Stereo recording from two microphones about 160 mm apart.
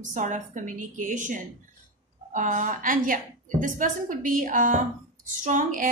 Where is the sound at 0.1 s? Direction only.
50° right (ahead or behind).